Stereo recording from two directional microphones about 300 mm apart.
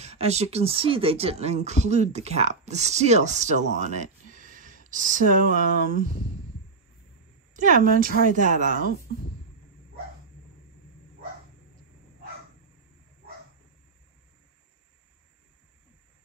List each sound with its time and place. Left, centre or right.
0.0 s speech: right
7.5 s speech: right